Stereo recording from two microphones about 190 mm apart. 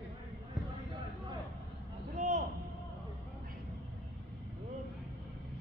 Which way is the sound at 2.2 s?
35° right (ahead or behind).